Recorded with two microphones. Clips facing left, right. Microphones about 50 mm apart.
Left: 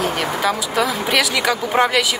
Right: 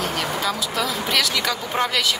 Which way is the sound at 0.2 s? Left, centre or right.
Left.